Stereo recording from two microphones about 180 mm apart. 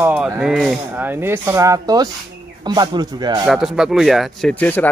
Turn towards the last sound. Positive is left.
turn(degrees=10)  # may be behind; listen again after turning